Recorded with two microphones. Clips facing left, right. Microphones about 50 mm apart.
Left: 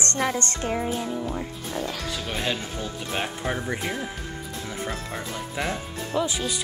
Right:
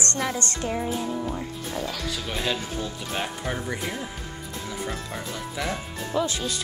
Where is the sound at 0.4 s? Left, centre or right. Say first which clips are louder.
Left 1 dB; left.